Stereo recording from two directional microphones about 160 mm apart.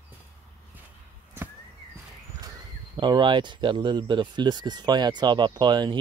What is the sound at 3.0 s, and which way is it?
Speech, 30° right (ahead or behind).